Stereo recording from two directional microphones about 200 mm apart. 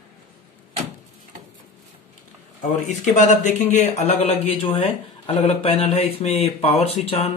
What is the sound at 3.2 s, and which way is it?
Speech, 35° left (ahead or behind).